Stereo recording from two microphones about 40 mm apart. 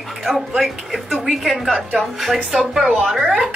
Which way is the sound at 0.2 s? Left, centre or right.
Centre.